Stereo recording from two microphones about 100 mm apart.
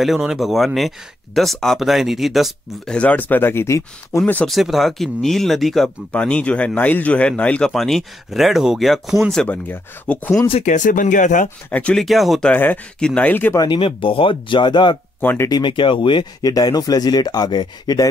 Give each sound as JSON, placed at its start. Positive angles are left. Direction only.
{"t": 0.0, "sound": "speech", "side_deg": -5}
{"t": 2.9, "sound": "speech", "side_deg": 15}
{"t": 4.5, "sound": "speech", "side_deg": 0}
{"t": 7.7, "sound": "speech", "side_deg": 0}
{"t": 9.4, "sound": "speech", "side_deg": 15}
{"t": 11.7, "sound": "speech", "side_deg": 15}
{"t": 12.0, "sound": "speech", "side_deg": 0}
{"t": 12.4, "sound": "speech", "side_deg": 15}
{"t": 13.7, "sound": "speech", "side_deg": 60}
{"t": 15.1, "sound": "speech", "side_deg": 20}
{"t": 15.4, "sound": "speech", "side_deg": 45}
{"t": 16.4, "sound": "speech", "side_deg": 40}